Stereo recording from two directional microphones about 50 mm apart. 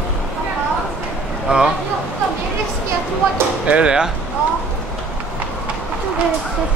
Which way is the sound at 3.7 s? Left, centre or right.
Centre.